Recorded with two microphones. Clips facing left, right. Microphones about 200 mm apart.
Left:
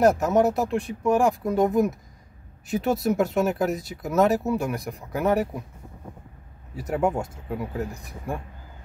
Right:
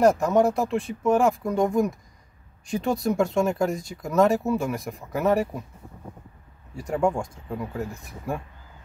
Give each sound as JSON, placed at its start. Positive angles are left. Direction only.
{"t": 0.0, "sound": "speech", "side_deg": 5}
{"t": 6.9, "sound": "speech", "side_deg": 5}